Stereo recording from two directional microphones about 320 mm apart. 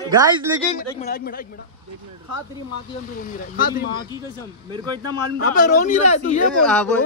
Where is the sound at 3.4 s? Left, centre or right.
Left.